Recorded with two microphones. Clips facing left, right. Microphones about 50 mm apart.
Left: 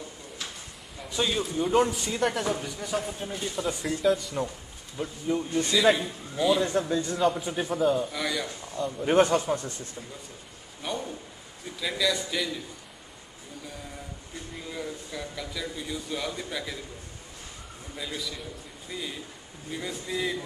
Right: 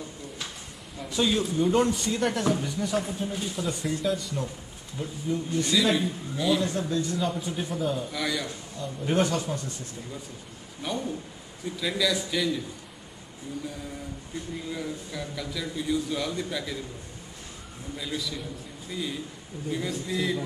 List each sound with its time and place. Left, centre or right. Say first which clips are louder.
1.0 s a man's voice: right 3 dB; centre
4.9 s speech: left 1 dB; centre
5.8 s a man's voice: left 3 dB; centre
7.4 s a man's voice: left 2 dB; centre
7.7 s a man's voice: left 6 dB; centre
9.0 s speech: left 4 dB; left
10.8 s a man's voice: right 2 dB; centre
14.7 s a man's voice: left 1 dB; centre
17.9 s a man's voice: right 2 dB; centre